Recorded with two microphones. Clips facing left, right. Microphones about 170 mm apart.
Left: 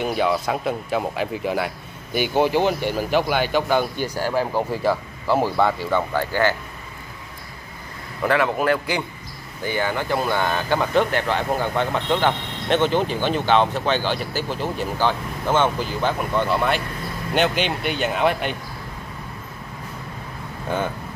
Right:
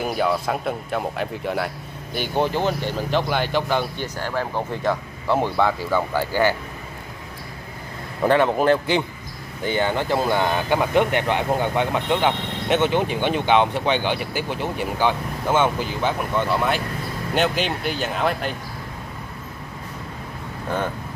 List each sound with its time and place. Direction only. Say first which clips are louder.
0.0 s speech: left 1 dB; centre (ahead or behind)
8.2 s a man's voice: right 3 dB; 30° right (ahead or behind); by 18.5 s centre (ahead or behind)